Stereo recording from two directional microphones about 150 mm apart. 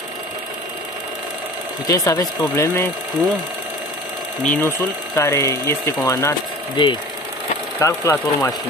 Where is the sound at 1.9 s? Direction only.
25° left (ahead or behind).